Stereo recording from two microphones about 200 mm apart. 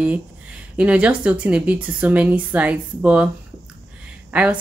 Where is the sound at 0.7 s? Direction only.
5° right (ahead or behind).